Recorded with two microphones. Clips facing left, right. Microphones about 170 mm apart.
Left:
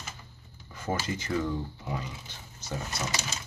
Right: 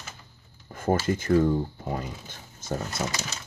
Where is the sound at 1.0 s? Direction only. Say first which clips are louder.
Right 11 dB; 50° right (ahead or behind).